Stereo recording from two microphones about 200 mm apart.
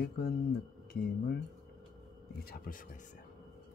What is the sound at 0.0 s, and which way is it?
Speech, 50° left (ahead or behind).